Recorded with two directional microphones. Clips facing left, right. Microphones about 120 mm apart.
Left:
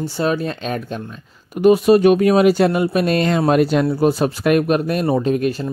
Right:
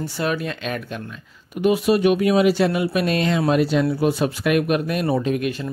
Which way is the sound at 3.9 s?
40° left (ahead or behind).